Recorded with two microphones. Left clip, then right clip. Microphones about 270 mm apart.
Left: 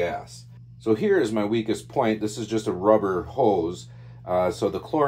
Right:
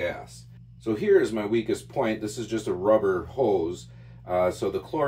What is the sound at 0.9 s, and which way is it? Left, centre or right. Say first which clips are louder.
Speech: right 1 dB; left.